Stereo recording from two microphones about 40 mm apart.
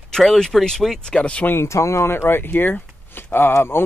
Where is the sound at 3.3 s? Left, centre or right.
Left.